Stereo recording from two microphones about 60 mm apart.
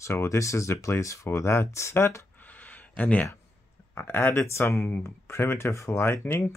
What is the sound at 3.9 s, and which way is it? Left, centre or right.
Speech, left.